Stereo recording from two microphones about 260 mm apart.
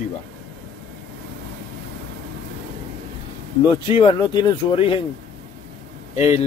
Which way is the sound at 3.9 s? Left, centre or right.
Centre.